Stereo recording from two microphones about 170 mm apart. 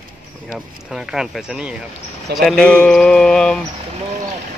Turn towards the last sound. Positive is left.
turn(degrees=5)  # may be behind; listen again after turning